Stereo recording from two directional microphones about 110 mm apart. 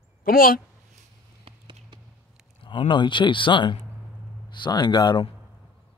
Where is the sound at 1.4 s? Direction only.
45° right (ahead or behind).